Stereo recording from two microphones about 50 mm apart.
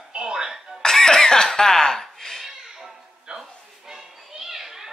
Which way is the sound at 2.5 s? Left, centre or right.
Centre.